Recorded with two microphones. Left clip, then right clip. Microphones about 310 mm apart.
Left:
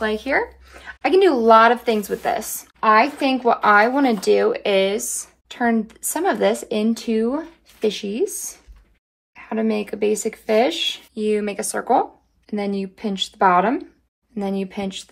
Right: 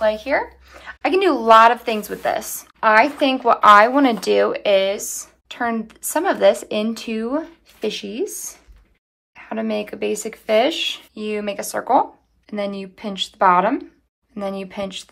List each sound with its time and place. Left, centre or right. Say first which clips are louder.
0.0 s speech: right 2 dB; centre
9.3 s speech: left 1 dB; right